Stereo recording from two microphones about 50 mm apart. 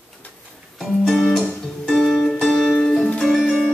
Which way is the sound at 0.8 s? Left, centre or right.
Centre.